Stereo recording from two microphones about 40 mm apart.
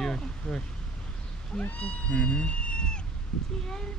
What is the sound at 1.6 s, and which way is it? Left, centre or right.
A child's voice, left.